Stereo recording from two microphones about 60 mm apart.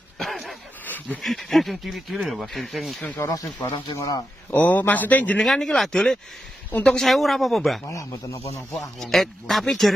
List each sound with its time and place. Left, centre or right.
0.2 s a sound: centre
1.2 s speech: centre
3.2 s speech: left
4.5 s speech: left
5.4 s speech: centre
6.7 s a woman's voice: left
7.0 s speech: centre
7.8 s speech: left
9.0 s speech: centre